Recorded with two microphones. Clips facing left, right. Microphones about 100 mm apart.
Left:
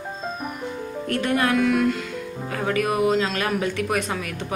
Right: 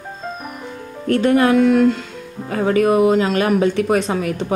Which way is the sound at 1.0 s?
30° right (ahead or behind).